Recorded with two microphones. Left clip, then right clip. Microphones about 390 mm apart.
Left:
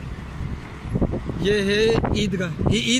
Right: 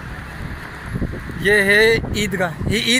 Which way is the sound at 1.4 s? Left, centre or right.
Centre.